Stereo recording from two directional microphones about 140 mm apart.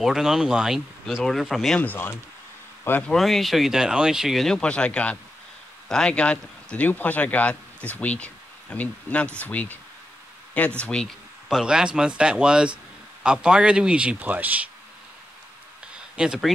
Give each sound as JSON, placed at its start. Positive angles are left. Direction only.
{"t": 0.0, "sound": "speech", "side_deg": -5}
{"t": 1.8, "sound": "speech", "side_deg": 15}
{"t": 10.8, "sound": "a man's voice", "side_deg": 5}
{"t": 16.2, "sound": "speech", "side_deg": -5}